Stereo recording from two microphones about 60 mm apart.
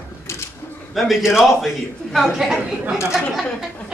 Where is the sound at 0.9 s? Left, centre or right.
Centre.